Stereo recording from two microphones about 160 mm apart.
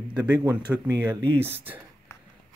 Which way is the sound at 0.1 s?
10° right (ahead or behind).